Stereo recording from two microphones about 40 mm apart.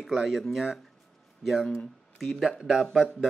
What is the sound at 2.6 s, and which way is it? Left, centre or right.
Speech, centre.